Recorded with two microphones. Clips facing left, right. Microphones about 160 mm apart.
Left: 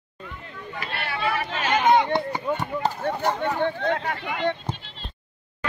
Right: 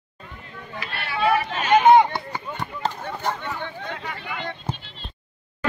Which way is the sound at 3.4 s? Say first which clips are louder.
Left 8 dB; 55° left (ahead or behind).